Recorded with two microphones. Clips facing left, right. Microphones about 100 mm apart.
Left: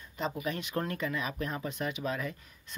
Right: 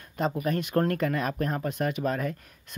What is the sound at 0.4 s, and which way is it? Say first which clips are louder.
Speech: right 10 dB; 50° right (ahead or behind).